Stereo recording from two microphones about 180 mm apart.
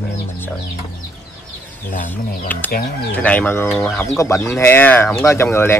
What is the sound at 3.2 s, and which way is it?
Speech, 10° left (ahead or behind).